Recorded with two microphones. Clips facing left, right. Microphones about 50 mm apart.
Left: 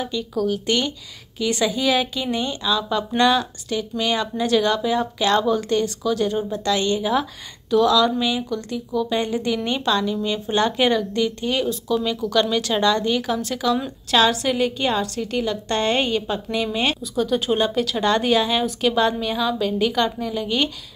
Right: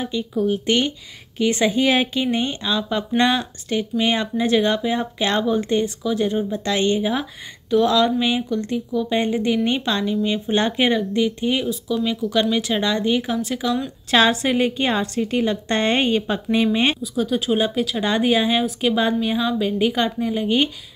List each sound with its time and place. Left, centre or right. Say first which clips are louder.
0.0 s a woman's voice: right 1 dB; right
11.6 s a woman's voice: even; centre
14.1 s speech: right 1 dB; right
17.0 s a woman's voice: even; centre